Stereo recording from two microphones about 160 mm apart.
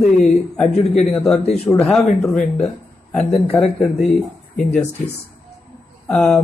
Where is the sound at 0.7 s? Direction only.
45° left (ahead or behind).